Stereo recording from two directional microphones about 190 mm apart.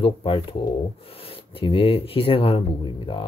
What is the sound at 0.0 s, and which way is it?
Speech, 25° left (ahead or behind).